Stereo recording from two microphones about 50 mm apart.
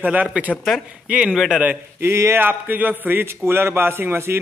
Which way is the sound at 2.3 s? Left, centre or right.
Right.